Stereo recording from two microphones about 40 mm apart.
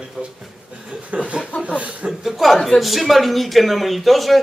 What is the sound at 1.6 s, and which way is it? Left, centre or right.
Chuckle, right.